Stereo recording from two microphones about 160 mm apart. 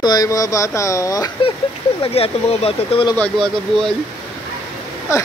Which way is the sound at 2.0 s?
40° left (ahead or behind).